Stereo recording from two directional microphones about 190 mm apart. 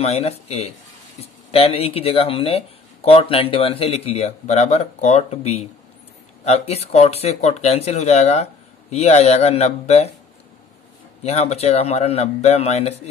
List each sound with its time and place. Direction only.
0.0 s speech: 35° left (ahead or behind)
11.2 s speech: 35° left (ahead or behind)